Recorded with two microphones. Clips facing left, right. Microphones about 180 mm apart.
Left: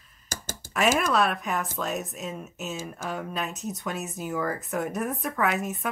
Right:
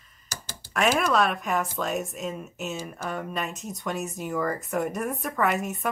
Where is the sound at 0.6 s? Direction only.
45° left (ahead or behind).